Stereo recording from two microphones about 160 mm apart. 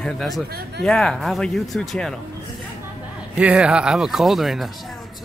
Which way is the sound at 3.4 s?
5° right (ahead or behind).